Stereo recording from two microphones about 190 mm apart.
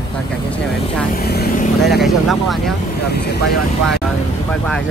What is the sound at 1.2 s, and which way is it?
Speech, 55° left (ahead or behind).